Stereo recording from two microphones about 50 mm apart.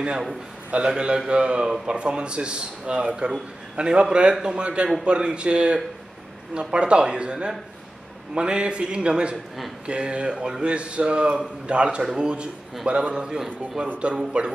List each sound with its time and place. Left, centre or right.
0.7 s a man's voice: right